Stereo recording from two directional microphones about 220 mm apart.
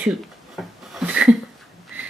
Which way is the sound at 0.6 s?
Centre (ahead or behind).